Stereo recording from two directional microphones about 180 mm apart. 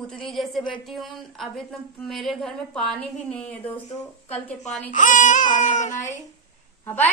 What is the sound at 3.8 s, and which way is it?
Speech, 40° left (ahead or behind).